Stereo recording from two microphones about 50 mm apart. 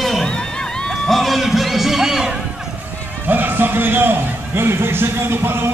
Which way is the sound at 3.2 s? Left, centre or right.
Right.